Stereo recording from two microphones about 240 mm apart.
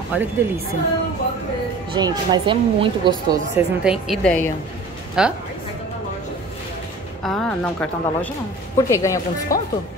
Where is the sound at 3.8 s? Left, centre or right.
Centre.